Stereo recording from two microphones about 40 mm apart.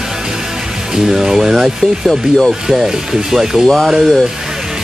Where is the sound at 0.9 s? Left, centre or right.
Centre.